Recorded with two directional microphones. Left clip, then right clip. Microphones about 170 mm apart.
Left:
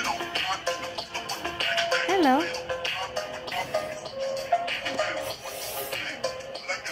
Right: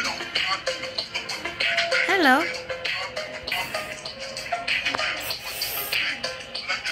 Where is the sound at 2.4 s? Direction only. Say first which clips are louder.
Right 1 dB; 40° left (ahead or behind).